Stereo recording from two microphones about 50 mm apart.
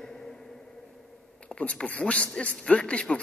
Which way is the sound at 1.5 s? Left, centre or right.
Left.